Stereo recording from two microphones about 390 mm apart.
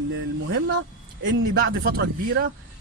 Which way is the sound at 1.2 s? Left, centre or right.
Right.